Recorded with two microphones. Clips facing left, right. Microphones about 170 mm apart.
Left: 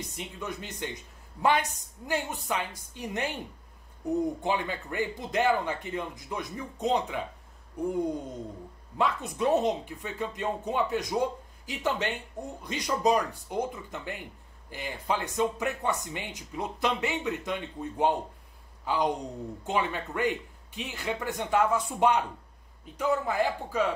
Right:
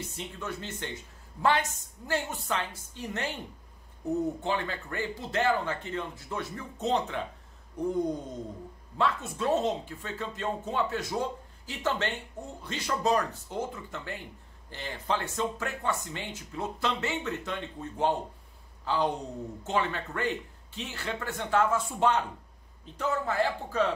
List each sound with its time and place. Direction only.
0.1 s speech: 15° left (ahead or behind)
2.0 s speech: 15° left (ahead or behind)